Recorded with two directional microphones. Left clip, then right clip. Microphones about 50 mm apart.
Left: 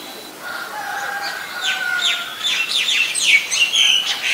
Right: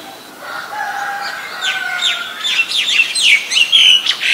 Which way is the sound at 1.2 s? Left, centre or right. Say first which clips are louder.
Right 3 dB; left.